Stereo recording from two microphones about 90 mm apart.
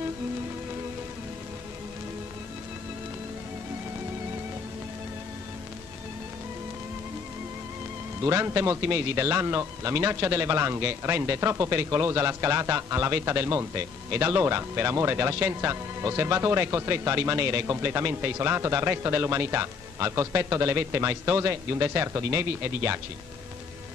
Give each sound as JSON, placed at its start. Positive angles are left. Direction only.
{"t": 8.2, "sound": "a man's voice", "side_deg": -30}